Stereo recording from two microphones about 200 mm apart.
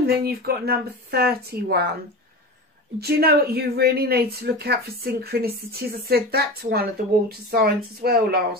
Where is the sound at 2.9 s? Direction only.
50° right (ahead or behind).